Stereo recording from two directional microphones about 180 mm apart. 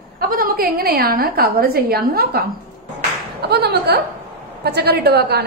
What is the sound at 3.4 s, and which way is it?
A woman's voice, 65° right (ahead or behind).